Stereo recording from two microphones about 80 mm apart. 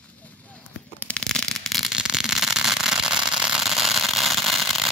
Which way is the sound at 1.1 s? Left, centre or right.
Centre.